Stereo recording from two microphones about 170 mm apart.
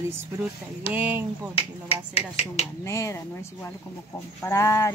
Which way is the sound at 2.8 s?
15° left (ahead or behind).